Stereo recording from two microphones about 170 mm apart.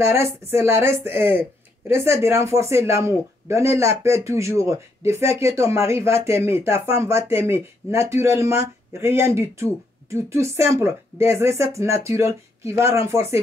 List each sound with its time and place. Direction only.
0.0 s speech: 15° right (ahead or behind)